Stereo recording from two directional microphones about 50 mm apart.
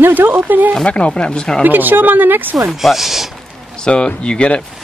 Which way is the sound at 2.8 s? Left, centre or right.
Centre.